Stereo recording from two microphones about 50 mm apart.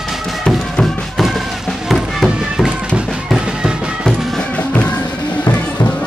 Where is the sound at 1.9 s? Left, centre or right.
Centre.